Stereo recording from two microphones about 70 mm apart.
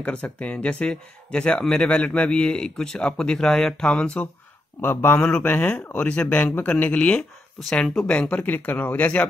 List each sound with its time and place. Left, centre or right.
0.0 s speech: centre
4.8 s speech: left
5.4 s speech: left